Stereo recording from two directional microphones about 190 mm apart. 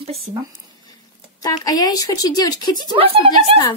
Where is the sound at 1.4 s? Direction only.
20° left (ahead or behind).